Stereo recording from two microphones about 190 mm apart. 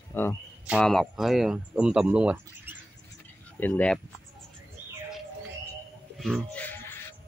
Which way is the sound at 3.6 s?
10° left (ahead or behind).